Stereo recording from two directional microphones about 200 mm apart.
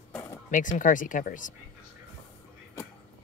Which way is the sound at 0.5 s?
40° left (ahead or behind).